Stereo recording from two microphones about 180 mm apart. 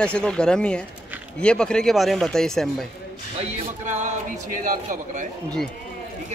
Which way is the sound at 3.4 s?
40° right (ahead or behind).